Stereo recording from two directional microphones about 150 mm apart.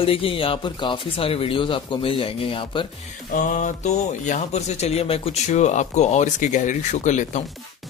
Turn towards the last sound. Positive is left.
turn(degrees=55)  # may be behind; listen again after turning